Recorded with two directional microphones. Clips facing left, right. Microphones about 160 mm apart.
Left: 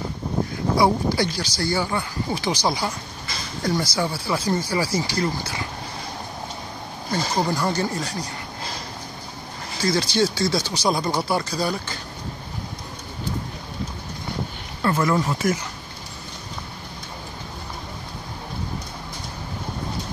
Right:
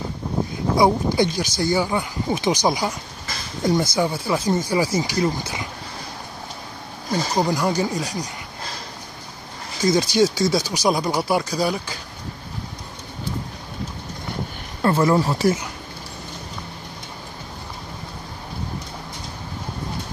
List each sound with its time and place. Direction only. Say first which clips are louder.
0.7 s speech: right 2 dB; 20° right (ahead or behind)
7.3 s speech: right 3 dB; 15° right (ahead or behind)
9.8 s speech: right 4 dB; 20° right (ahead or behind)
14.8 s speech: right 3 dB; 30° right (ahead or behind)